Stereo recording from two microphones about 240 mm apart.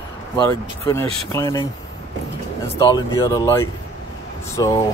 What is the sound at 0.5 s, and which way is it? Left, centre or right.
Speech, centre.